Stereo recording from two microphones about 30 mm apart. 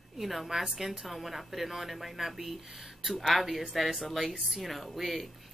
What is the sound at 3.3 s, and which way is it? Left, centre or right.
Speech, centre.